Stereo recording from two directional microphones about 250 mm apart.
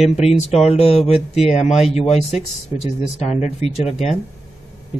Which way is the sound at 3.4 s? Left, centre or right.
Left.